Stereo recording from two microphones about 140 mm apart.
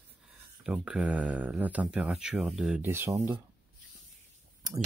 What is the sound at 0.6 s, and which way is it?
Speech, 5° right (ahead or behind).